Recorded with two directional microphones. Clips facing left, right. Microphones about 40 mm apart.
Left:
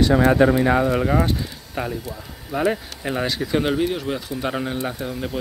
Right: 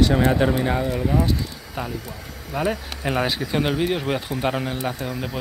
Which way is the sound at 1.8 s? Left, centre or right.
Centre.